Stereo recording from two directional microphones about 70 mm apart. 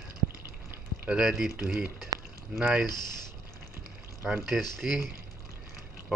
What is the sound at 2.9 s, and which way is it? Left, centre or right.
Speech, left.